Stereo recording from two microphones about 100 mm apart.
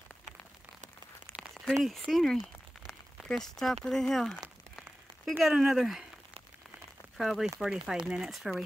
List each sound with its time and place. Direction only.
1.3 s a sound: centre (ahead or behind)
2.0 s speech: centre (ahead or behind)
5.4 s speech: 5° right (ahead or behind)
7.2 s speech: centre (ahead or behind)